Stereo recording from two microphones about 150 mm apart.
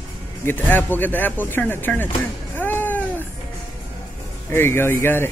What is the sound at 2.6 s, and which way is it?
Music, 10° left (ahead or behind).